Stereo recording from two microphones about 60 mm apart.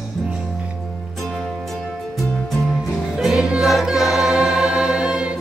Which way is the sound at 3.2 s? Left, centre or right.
Centre.